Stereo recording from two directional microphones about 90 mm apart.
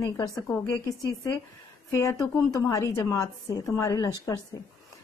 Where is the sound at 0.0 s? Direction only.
45° left (ahead or behind).